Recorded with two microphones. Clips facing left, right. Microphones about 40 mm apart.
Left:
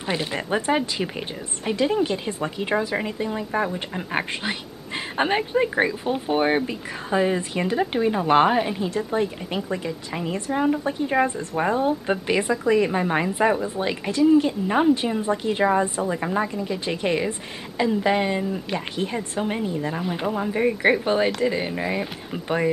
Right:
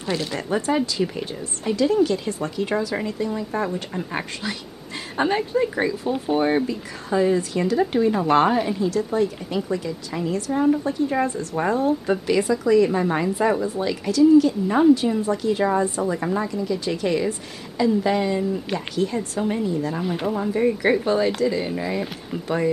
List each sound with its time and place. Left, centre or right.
0.0 s speech: left
20.0 s speech: centre